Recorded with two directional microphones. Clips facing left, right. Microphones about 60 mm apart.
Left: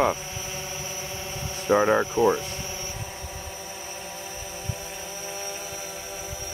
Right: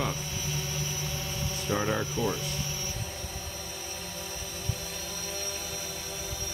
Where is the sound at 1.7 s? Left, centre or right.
Left.